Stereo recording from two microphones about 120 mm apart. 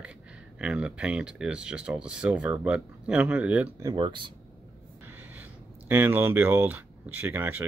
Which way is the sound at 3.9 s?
45° right (ahead or behind).